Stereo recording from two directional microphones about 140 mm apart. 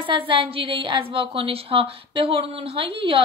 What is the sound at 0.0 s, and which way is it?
A woman's voice, 40° right (ahead or behind).